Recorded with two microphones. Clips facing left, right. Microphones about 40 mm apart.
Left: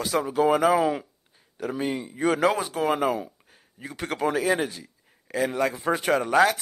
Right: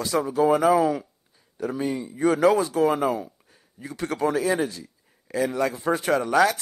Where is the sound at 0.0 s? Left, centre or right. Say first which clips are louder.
Right 1 dB; left.